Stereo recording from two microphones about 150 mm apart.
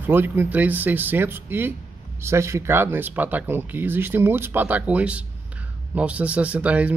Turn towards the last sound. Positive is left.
turn(degrees=-10)  # may be behind; listen again after turning